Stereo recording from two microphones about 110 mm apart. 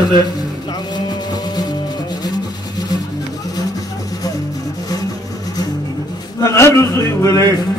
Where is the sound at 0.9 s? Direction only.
40° left (ahead or behind).